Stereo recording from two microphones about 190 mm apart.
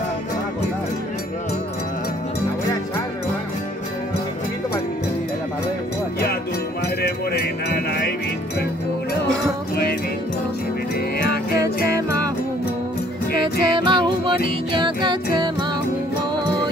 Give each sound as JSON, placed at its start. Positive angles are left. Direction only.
{"t": 7.0, "sound": "music", "side_deg": 55}
{"t": 13.4, "sound": "music", "side_deg": -25}